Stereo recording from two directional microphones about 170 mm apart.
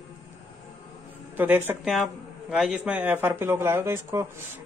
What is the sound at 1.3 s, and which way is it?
Speech, 10° right (ahead or behind).